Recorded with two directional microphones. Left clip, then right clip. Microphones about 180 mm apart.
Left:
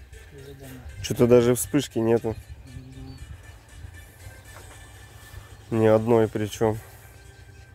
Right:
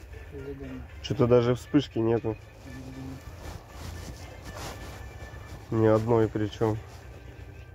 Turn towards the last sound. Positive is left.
turn(degrees=90)